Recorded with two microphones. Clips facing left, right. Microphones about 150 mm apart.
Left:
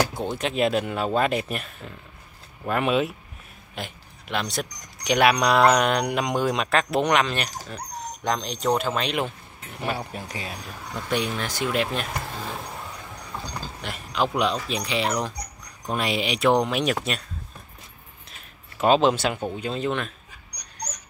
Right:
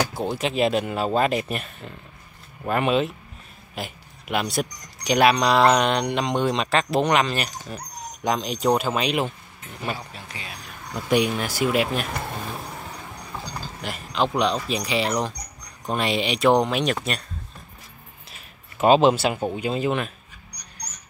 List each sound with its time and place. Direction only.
0.1 s speech: 5° right (ahead or behind)
10.2 s speech: 40° left (ahead or behind)
10.9 s speech: 10° right (ahead or behind)
13.7 s speech: centre (ahead or behind)
18.8 s speech: 5° right (ahead or behind)